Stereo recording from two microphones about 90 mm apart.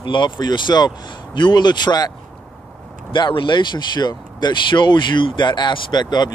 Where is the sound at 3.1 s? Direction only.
65° left (ahead or behind).